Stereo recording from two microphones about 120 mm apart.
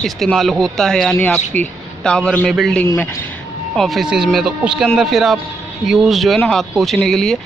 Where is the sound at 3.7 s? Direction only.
Centre (ahead or behind).